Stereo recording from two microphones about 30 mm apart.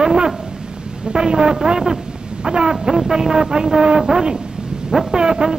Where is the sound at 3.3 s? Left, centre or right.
Right.